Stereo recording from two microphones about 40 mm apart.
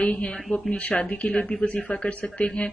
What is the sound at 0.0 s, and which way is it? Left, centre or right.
A woman's voice, left.